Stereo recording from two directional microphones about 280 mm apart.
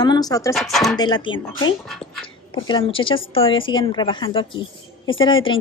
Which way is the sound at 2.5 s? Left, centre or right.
Centre.